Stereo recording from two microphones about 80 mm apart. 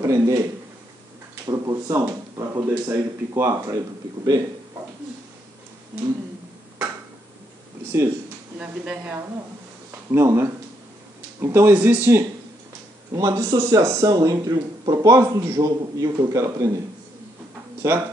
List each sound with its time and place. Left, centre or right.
0.0 s speech: right
2.6 s speech: right
7.8 s speech: right
8.5 s speech: centre
9.8 s speech: right
11.7 s speech: right
13.1 s speech: right